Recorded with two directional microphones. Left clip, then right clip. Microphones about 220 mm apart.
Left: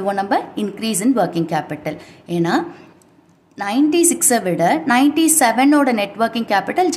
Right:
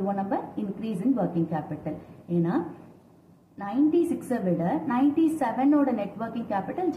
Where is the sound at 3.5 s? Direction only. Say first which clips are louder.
Left 8 dB; 40° left (ahead or behind).